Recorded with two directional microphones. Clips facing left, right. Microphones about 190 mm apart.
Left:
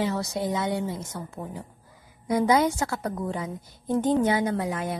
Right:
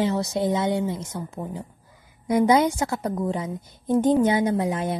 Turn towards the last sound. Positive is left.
turn(degrees=-25)  # may be behind; listen again after turning